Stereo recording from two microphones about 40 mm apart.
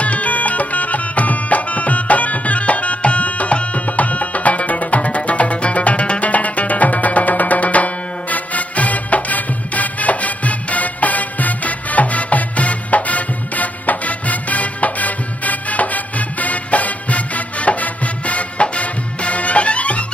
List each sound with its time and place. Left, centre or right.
0.0 s music: left